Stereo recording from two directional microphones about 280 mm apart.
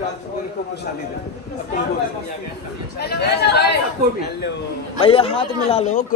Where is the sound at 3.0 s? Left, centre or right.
Left.